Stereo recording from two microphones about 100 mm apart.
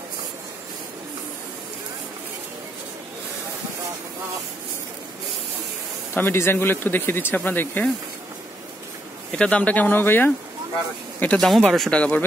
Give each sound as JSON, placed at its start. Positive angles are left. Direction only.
{"t": 6.1, "sound": "speech", "side_deg": 25}
{"t": 9.3, "sound": "speech", "side_deg": 10}
{"t": 11.3, "sound": "speech", "side_deg": 5}